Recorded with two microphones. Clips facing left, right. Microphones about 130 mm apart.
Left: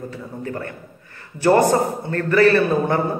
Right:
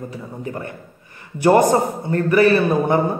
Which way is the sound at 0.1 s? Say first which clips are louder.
Even; 20° right (ahead or behind).